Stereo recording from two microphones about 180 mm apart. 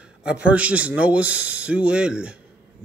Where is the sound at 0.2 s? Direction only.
5° right (ahead or behind).